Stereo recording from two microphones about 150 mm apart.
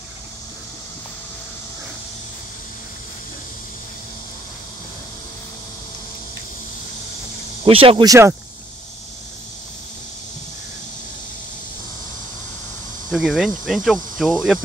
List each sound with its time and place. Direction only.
7.6 s speech: 40° right (ahead or behind)
8.0 s speech: 20° right (ahead or behind)
13.1 s speech: centre (ahead or behind)